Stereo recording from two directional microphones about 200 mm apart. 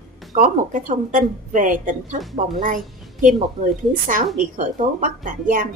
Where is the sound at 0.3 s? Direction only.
40° right (ahead or behind).